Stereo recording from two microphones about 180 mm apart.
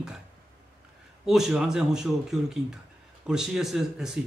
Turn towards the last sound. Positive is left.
turn(degrees=0)  # may be behind; listen again after turning